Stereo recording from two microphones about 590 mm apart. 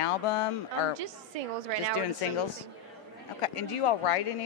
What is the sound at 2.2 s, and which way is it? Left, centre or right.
Speech, left.